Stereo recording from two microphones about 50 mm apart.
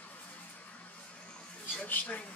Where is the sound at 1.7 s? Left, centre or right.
Left.